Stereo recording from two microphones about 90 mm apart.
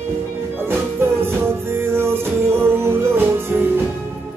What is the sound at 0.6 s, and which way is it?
Music, 25° right (ahead or behind).